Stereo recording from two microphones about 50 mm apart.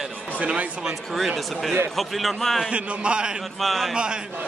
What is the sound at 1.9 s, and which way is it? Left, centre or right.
Speech, centre.